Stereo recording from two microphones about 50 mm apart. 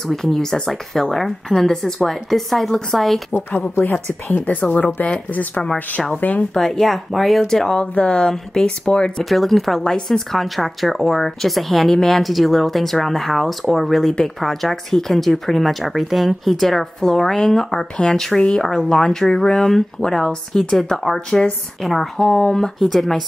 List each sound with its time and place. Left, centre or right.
0.1 s speech: centre
3.8 s a woman's voice: left
6.5 s speech: centre
7.8 s speech: left
9.2 s speech: centre